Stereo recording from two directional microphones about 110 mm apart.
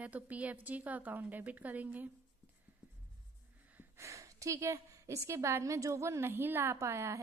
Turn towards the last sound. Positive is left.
turn(degrees=-25)  # may be behind; listen again after turning